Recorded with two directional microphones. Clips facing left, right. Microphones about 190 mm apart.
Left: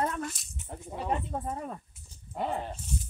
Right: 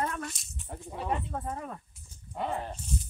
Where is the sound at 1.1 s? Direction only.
15° left (ahead or behind).